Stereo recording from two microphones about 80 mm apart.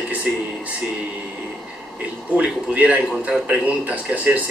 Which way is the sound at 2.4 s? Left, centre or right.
Centre.